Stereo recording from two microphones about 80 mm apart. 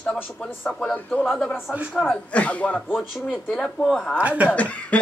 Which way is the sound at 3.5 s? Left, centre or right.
Centre.